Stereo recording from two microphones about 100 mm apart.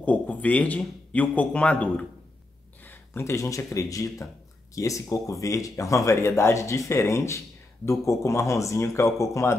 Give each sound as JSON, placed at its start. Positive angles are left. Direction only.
{"t": 0.0, "sound": "speech", "side_deg": 15}
{"t": 2.8, "sound": "speech", "side_deg": 20}